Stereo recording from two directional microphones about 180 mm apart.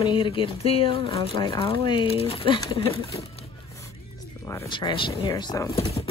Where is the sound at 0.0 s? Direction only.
30° left (ahead or behind).